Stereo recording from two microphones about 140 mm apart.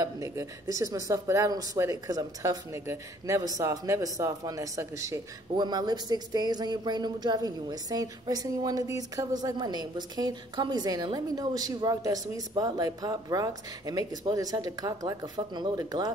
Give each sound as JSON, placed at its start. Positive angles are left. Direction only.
{"t": 0.0, "sound": "speech", "side_deg": -25}